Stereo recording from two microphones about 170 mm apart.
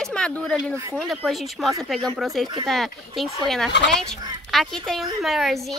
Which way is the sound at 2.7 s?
Centre (ahead or behind).